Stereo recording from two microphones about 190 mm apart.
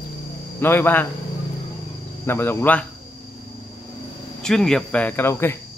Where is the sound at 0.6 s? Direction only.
10° left (ahead or behind).